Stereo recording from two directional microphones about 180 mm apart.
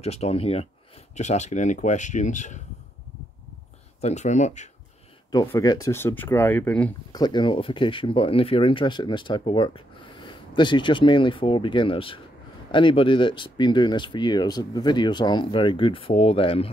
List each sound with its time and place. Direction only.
0.0 s speech: 35° left (ahead or behind)
4.0 s speech: 40° left (ahead or behind)
5.5 s speech: 20° left (ahead or behind)
7.1 s speech: 20° left (ahead or behind)